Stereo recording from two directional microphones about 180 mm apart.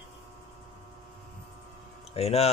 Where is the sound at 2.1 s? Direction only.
35° left (ahead or behind).